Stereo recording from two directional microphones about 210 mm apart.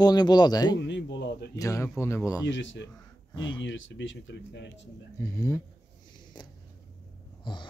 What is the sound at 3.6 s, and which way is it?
Speech, 65° left (ahead or behind).